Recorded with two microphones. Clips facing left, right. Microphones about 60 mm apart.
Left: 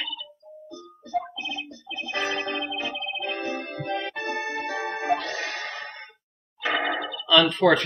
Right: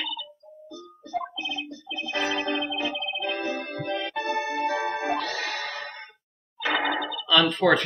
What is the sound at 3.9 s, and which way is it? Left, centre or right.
Music, left.